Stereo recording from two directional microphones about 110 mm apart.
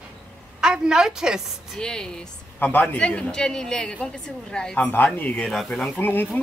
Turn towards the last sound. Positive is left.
turn(degrees=20)  # may be behind; listen again after turning